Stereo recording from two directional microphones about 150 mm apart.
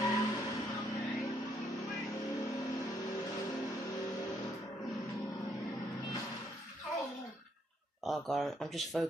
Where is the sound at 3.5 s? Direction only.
25° left (ahead or behind).